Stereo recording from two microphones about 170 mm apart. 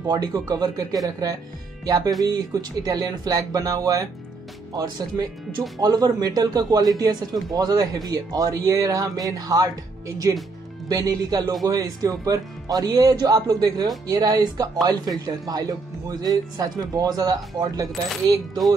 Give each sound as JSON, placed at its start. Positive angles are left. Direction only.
{"t": 0.0, "sound": "speech", "side_deg": -25}